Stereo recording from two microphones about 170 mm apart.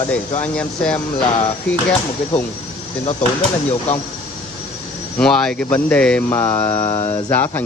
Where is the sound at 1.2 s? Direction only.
35° left (ahead or behind).